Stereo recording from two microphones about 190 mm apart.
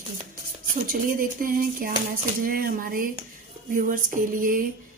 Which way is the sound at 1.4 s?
50° right (ahead or behind).